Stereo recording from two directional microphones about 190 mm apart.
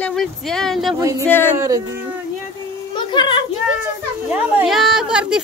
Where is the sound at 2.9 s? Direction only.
25° left (ahead or behind).